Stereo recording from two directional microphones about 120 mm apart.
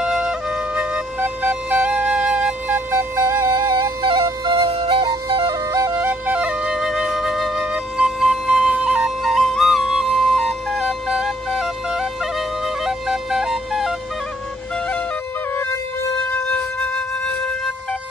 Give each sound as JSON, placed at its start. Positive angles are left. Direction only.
{"t": 0.0, "sound": "music", "side_deg": -5}
{"t": 2.9, "sound": "music", "side_deg": -25}
{"t": 6.0, "sound": "flute", "side_deg": -15}